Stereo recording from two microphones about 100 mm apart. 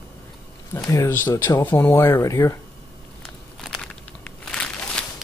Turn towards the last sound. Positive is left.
turn(degrees=10)  # may be behind; listen again after turning